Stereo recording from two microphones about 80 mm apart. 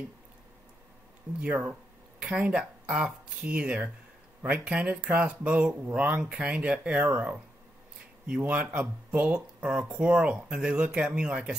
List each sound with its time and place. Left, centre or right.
1.4 s speech: centre
8.4 s speech: centre